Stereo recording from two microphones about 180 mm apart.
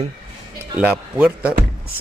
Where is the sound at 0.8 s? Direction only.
5° right (ahead or behind).